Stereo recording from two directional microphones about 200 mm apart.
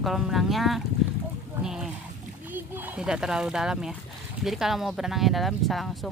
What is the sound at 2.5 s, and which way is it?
A child's voice, 10° right (ahead or behind).